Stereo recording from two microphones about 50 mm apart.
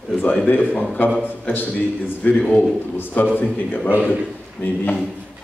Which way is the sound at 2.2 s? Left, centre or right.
Left.